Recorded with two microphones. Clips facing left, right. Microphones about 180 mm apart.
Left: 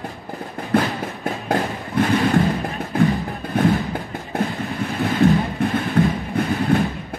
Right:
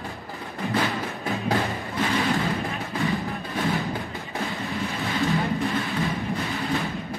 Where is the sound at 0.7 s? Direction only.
55° left (ahead or behind).